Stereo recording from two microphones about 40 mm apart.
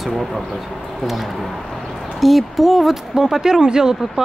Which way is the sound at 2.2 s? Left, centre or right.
Centre.